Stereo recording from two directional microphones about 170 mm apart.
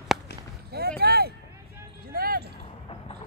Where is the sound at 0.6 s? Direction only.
65° right (ahead or behind).